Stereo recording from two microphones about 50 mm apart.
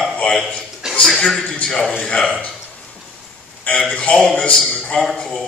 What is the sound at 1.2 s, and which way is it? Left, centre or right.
A man's voice, centre.